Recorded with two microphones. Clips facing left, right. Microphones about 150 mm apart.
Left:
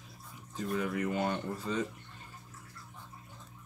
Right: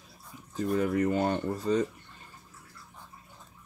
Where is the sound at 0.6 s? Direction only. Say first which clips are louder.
Right 6 dB; 40° right (ahead or behind).